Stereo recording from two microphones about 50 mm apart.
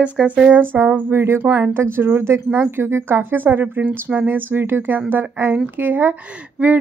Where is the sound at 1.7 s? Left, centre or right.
Right.